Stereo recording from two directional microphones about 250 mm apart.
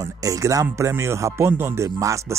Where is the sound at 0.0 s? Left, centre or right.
Centre.